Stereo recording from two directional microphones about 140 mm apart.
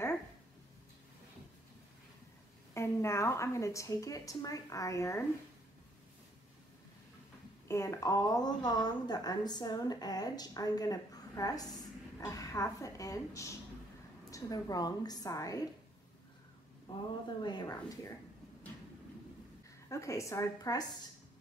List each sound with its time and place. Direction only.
2.7 s a woman's voice: 20° left (ahead or behind)
7.6 s a woman's voice: 20° left (ahead or behind)
16.9 s a woman's voice: 40° left (ahead or behind)
19.9 s a woman's voice: 20° left (ahead or behind)